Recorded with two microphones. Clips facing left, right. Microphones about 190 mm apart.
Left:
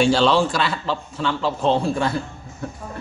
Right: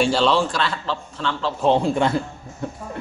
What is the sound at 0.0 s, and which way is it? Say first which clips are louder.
A man's voice: left 2 dB; centre (ahead or behind).